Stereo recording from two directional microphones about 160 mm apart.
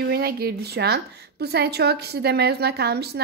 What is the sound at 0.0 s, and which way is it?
A woman's voice, 75° right (ahead or behind).